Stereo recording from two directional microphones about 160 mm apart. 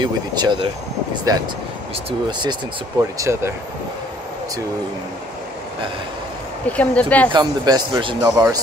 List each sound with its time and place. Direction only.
0.0 s speech: 30° right (ahead or behind)
3.2 s speech: 15° right (ahead or behind)
6.6 s speech: 10° left (ahead or behind)
7.3 s speech: 25° right (ahead or behind)